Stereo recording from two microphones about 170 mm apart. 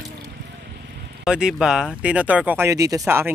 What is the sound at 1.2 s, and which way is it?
Speech, 5° right (ahead or behind).